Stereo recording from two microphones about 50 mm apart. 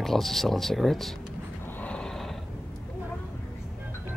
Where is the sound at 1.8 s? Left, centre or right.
Left.